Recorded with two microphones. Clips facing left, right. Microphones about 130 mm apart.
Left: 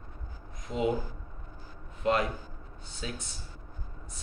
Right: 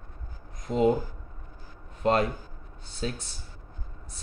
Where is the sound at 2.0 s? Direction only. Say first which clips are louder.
Right 3 dB; 40° right (ahead or behind).